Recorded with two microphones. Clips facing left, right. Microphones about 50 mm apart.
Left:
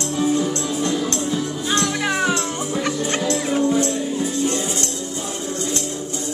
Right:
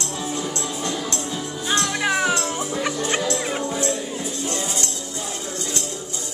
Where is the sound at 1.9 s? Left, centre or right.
Centre.